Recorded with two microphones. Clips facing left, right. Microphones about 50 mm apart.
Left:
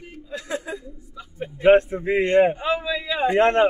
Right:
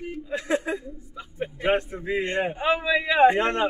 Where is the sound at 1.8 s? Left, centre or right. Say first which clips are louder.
Left 6 dB; left.